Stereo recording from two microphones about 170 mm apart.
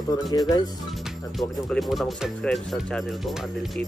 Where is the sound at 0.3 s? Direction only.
20° left (ahead or behind).